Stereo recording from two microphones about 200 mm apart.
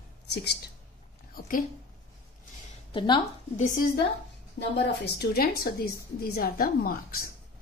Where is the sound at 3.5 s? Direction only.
40° left (ahead or behind).